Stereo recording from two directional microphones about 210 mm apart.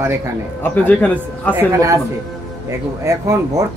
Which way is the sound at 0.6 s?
10° left (ahead or behind).